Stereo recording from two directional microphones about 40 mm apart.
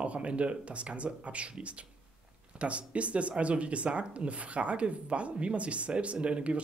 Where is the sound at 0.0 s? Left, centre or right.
Right.